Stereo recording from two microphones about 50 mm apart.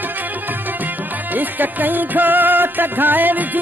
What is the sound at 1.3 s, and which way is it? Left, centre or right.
Music, right.